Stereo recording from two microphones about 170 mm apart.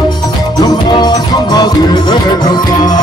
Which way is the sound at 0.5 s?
25° left (ahead or behind).